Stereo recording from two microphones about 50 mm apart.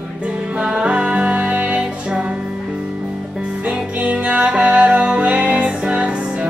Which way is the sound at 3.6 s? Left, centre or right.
Right.